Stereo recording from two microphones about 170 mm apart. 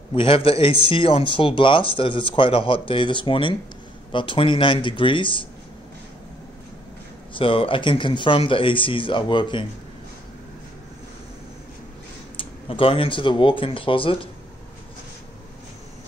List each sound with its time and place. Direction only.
0.1 s a man's voice: 30° left (ahead or behind)
7.3 s a man's voice: 30° left (ahead or behind)
12.4 s a man's voice: 30° left (ahead or behind)